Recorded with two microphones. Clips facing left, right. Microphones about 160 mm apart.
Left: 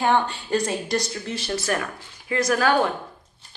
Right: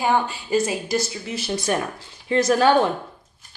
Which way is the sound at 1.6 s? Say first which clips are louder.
Right 2 dB; 25° right (ahead or behind).